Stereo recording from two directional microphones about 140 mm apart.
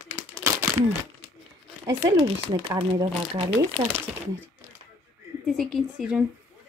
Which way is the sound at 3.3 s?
40° right (ahead or behind).